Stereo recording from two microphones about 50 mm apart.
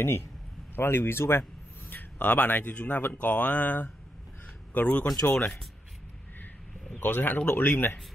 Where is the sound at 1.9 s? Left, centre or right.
Left.